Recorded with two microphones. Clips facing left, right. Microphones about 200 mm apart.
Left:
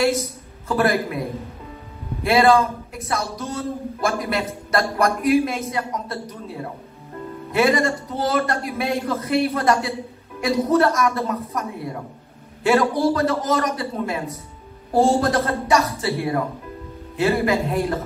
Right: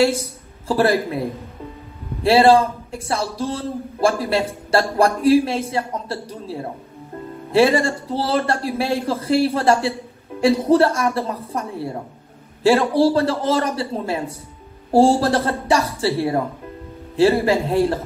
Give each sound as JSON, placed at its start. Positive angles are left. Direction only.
{"t": 0.0, "sound": "speech", "side_deg": -30}
{"t": 2.2, "sound": "a man's voice", "side_deg": -30}